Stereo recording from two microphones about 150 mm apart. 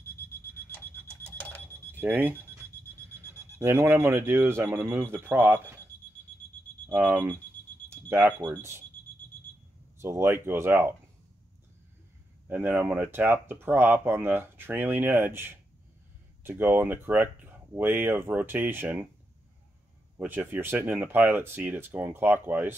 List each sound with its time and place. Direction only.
2.0 s speech: 10° right (ahead or behind)
6.9 s speech: 10° right (ahead or behind)
7.9 s alarm clock: 15° right (ahead or behind)
8.4 s speech: 20° right (ahead or behind)
9.9 s speech: 15° right (ahead or behind)
12.4 s speech: 15° right (ahead or behind)
20.2 s speech: 15° right (ahead or behind)